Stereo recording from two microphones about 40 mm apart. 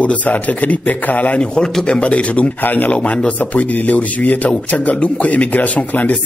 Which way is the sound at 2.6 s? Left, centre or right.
Left.